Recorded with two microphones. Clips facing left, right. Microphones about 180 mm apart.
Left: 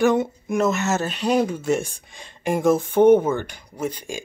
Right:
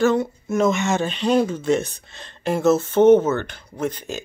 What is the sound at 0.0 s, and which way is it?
Speech, 15° left (ahead or behind).